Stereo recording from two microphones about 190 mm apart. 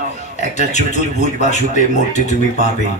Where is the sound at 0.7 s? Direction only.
40° left (ahead or behind).